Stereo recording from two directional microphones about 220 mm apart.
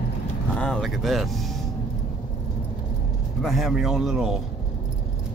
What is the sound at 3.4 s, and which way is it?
A man's voice, centre (ahead or behind).